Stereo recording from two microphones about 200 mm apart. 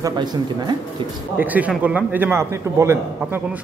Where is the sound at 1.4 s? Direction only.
10° right (ahead or behind).